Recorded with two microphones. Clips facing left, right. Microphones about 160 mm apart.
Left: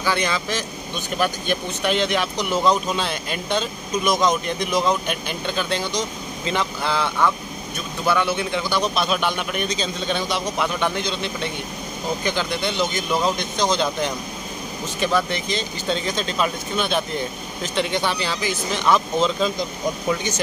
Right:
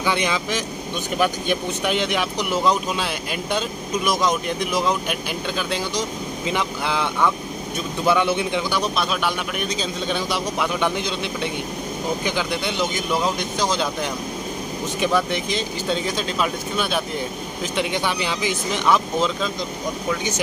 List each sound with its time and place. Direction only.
0.0 s speech: 15° right (ahead or behind)
8.9 s speech: centre (ahead or behind)